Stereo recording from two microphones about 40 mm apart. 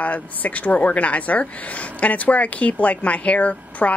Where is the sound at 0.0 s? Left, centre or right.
Left.